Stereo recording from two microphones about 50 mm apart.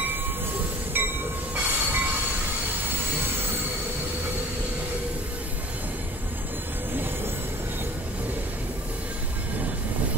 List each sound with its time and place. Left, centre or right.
1.0 s train: right